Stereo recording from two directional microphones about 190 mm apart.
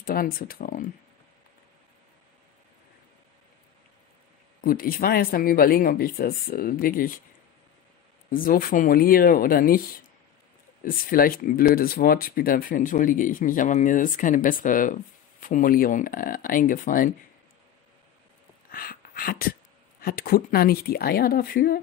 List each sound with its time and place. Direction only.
0.0 s speech: 50° left (ahead or behind)
4.6 s speech: 50° left (ahead or behind)
8.3 s speech: 50° left (ahead or behind)
18.7 s speech: 50° left (ahead or behind)